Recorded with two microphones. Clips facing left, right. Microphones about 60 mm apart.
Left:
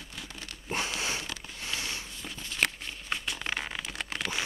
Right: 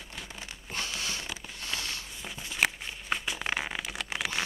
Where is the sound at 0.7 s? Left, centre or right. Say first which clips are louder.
Left 3 dB; centre.